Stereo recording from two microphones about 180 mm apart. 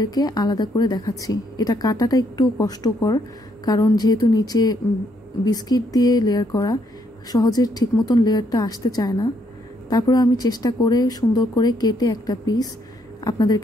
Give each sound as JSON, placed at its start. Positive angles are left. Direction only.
{"t": 0.0, "sound": "a woman's voice", "side_deg": 20}